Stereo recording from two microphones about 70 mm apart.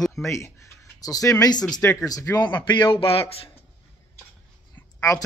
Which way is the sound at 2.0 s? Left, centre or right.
Left.